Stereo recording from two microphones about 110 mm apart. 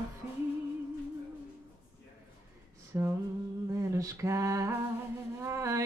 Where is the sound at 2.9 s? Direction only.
20° right (ahead or behind).